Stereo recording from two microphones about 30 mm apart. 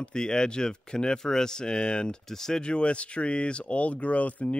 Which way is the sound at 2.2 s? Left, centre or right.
Centre.